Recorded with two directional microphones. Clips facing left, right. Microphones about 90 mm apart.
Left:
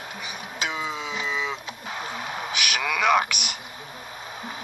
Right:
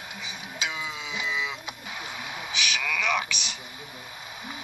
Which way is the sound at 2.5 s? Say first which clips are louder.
Left 2 dB; 55° left (ahead or behind).